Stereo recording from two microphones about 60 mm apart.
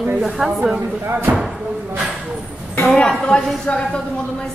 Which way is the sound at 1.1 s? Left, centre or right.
Right.